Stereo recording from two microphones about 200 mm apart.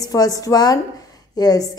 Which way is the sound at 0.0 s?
20° left (ahead or behind).